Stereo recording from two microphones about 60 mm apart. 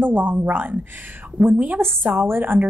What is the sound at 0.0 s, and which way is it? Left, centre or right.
A woman's voice, right.